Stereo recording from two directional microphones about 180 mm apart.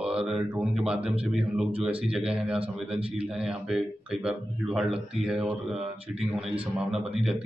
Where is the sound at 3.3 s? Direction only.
Centre (ahead or behind).